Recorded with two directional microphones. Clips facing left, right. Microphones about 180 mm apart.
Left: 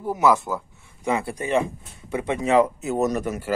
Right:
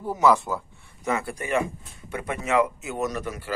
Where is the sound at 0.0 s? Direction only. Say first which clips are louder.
Left 1 dB; 10° left (ahead or behind).